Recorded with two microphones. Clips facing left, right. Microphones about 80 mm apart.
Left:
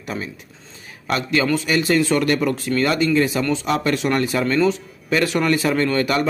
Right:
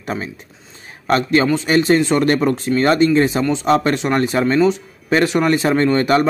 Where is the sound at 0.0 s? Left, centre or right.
Right.